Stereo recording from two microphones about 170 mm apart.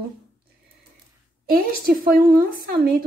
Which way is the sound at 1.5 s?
60° right (ahead or behind).